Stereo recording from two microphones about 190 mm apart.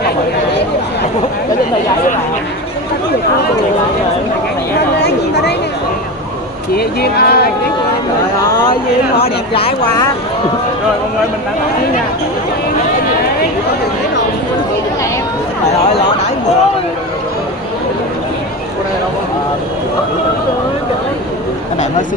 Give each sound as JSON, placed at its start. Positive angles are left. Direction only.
{"t": 5.0, "sound": "chatter", "side_deg": 60}
{"t": 6.7, "sound": "speech", "side_deg": 55}
{"t": 9.2, "sound": "speech", "side_deg": 30}